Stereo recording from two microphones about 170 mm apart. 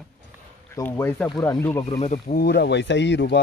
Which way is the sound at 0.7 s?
15° left (ahead or behind).